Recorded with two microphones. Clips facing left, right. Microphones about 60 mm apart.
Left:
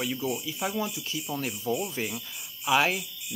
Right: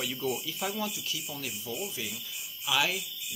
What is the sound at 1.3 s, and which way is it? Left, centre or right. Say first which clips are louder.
Speech: left 8 dB; left.